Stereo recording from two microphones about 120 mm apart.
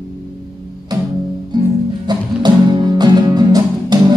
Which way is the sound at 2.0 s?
40° right (ahead or behind).